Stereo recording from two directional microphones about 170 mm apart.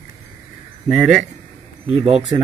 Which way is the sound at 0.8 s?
5° right (ahead or behind).